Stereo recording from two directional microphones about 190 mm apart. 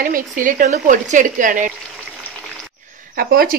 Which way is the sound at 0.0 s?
45° right (ahead or behind).